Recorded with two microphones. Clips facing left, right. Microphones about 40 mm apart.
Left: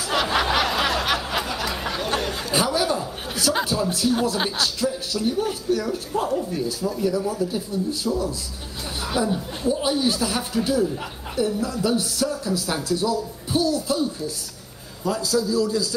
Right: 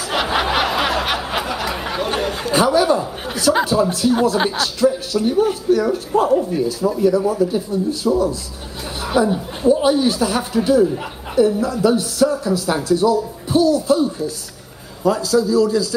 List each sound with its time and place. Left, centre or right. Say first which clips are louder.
0.4 s snicker: right 4 dB; right
1.1 s a sound: right 3 dB; centre
2.1 s chatter: right 4 dB; centre
2.4 s chuckle: right 9 dB; right
3.6 s speech: right 6 dB; right
15.5 s a man's voice: right 6 dB; right